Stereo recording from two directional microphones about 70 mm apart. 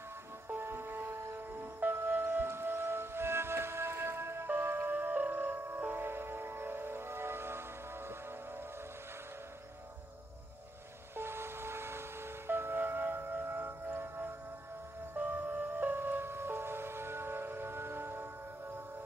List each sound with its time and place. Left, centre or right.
0.5 s music: right
11.1 s music: right
15.2 s music: right